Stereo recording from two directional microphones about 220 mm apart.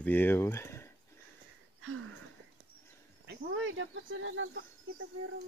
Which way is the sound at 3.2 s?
55° right (ahead or behind).